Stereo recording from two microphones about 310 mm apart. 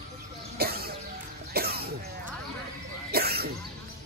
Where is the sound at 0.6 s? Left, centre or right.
Right.